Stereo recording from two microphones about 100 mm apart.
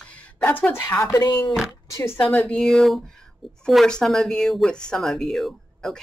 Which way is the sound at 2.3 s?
10° left (ahead or behind).